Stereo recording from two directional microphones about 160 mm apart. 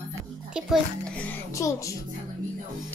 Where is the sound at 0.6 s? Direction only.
5° right (ahead or behind).